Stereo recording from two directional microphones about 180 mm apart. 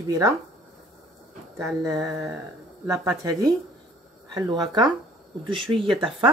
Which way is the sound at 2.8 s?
20° right (ahead or behind).